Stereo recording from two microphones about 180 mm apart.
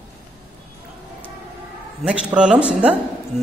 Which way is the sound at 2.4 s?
5° right (ahead or behind).